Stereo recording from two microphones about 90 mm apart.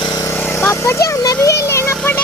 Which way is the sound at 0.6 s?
30° left (ahead or behind).